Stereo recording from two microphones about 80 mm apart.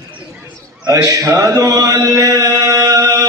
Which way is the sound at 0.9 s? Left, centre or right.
Right.